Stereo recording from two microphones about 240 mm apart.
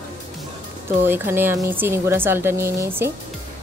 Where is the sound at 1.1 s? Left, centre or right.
Centre.